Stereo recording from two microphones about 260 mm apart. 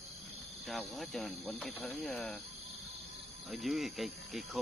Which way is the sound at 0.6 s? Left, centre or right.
Centre.